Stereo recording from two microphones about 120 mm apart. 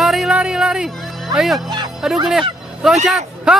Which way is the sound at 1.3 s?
Centre (ahead or behind).